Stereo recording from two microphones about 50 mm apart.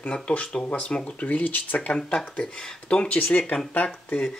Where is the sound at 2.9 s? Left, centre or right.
Left.